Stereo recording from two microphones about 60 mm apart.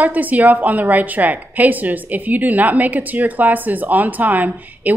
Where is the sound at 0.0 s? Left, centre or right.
Right.